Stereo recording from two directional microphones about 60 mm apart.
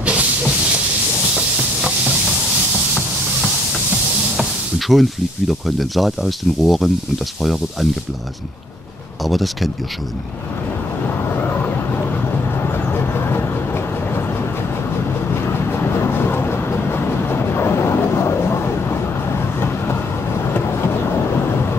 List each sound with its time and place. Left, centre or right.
0.0 s hiss: right
1.3 s a sound: centre
4.4 s speech: centre
9.2 s speech: centre
11.2 s vehicle: left
15.4 s train: left